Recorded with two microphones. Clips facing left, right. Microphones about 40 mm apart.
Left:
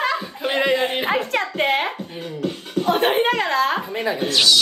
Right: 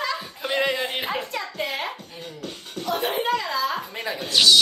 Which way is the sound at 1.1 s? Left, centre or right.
Left.